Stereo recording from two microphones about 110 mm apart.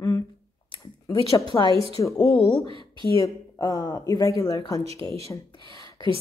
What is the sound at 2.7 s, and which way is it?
Speech, 50° right (ahead or behind).